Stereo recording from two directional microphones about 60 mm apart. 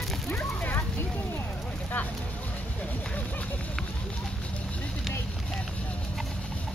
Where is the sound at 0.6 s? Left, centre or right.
Left.